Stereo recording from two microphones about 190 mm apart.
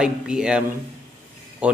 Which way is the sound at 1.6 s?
5° right (ahead or behind).